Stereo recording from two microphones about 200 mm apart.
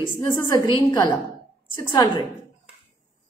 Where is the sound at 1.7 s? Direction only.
10° left (ahead or behind).